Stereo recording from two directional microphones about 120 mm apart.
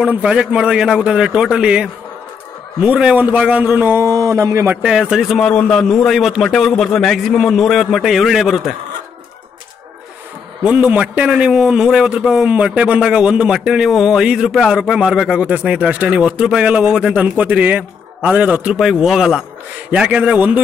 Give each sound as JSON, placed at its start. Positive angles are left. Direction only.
{"t": 0.0, "sound": "a man's voice", "side_deg": -10}
{"t": 4.8, "sound": "a man's voice", "side_deg": -5}
{"t": 10.6, "sound": "a man's voice", "side_deg": -10}